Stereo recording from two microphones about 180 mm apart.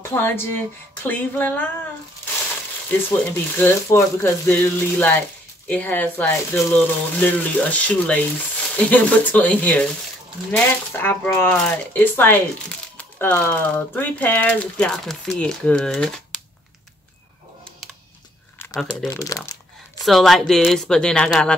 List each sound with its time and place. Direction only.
0.1 s speech: 10° left (ahead or behind)
3.1 s speech: 10° left (ahead or behind)
18.6 s crumpling: 15° left (ahead or behind)
19.0 s speech: 20° left (ahead or behind)
20.1 s speech: centre (ahead or behind)